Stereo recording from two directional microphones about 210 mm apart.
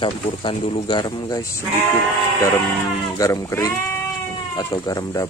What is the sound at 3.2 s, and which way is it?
Speech, 15° left (ahead or behind).